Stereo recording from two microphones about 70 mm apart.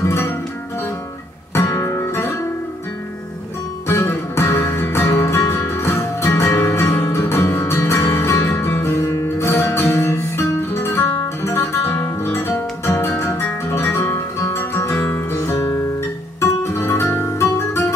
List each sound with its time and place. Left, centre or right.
0.0 s music: left
1.5 s music: left
3.8 s music: left
15.4 s guitar: left
16.3 s music: left